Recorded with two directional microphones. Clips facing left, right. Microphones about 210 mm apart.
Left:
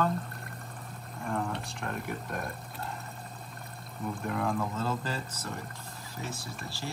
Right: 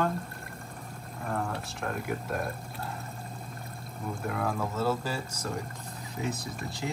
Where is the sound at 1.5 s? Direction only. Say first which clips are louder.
Right 1 dB; centre (ahead or behind).